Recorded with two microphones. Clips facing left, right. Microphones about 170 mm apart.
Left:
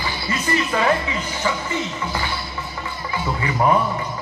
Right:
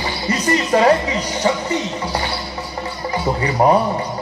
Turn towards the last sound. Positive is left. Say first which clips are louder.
# right 4 dB
turn(degrees=-35)  # may be behind; listen again after turning